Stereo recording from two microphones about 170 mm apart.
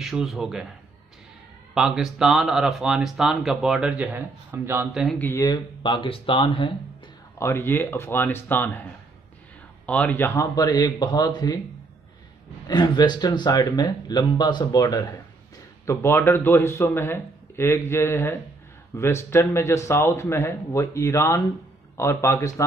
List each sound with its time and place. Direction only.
0.0 s speech: centre (ahead or behind)
1.8 s speech: centre (ahead or behind)
5.2 s speech: 15° left (ahead or behind)
7.3 s a man's voice: 15° left (ahead or behind)
9.8 s speech: 10° left (ahead or behind)
12.6 s a man's voice: 25° left (ahead or behind)